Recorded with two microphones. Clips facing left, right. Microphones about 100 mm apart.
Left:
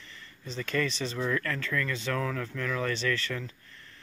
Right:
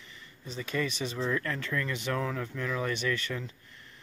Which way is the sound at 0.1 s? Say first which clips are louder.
Left 2 dB; 10° right (ahead or behind).